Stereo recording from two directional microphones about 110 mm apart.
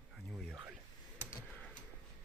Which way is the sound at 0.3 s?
Centre (ahead or behind).